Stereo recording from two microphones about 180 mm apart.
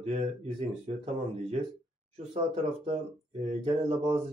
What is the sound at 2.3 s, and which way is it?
A man's voice, 35° right (ahead or behind).